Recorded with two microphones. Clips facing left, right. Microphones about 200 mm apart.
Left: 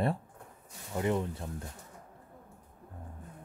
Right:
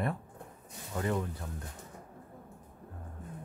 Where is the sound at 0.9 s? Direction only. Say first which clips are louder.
Left 2 dB; 20° left (ahead or behind).